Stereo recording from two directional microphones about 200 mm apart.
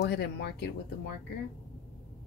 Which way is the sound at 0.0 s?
55° left (ahead or behind).